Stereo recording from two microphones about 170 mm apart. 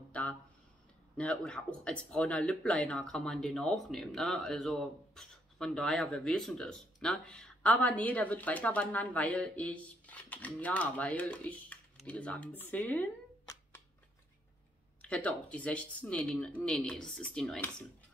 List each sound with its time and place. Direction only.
0.1 s a sound: 5° left (ahead or behind)
1.1 s speech: 5° left (ahead or behind)
15.0 s speech: 10° left (ahead or behind)